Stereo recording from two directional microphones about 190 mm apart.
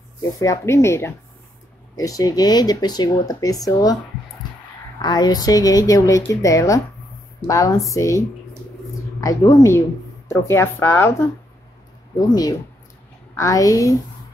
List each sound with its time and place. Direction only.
0.2 s a woman's voice: 15° left (ahead or behind)
9.2 s a woman's voice: 20° left (ahead or behind)